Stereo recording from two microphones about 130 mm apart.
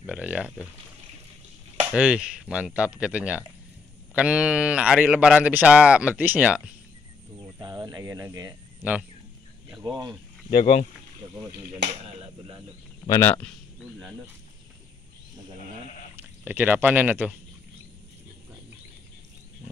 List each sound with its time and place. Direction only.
0.0 s a sound: 10° right (ahead or behind)
1.9 s a man's voice: 10° right (ahead or behind)
7.6 s cricket: 30° right (ahead or behind)
9.8 s speech: 35° right (ahead or behind)
10.5 s speech: 50° left (ahead or behind)
13.2 s speech: 15° left (ahead or behind)
16.2 s speech: 15° right (ahead or behind)